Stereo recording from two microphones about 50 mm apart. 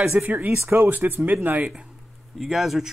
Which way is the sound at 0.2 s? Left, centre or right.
Right.